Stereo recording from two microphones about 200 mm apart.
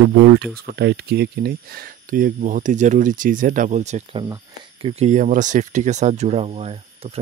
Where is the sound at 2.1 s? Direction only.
45° right (ahead or behind).